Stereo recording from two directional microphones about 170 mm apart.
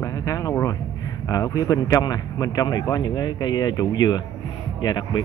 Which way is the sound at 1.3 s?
20° left (ahead or behind).